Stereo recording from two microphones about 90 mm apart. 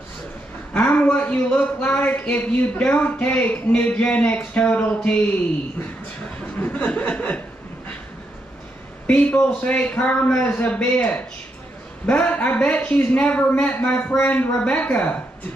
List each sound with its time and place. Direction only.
0.7 s speech: 15° left (ahead or behind)
6.6 s chuckle: 15° left (ahead or behind)
9.0 s speech: 15° left (ahead or behind)